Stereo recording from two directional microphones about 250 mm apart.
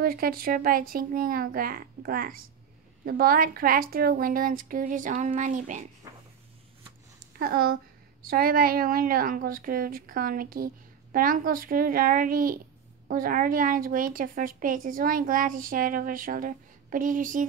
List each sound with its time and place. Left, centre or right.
0.0 s a woman's voice: right
7.3 s a woman's voice: right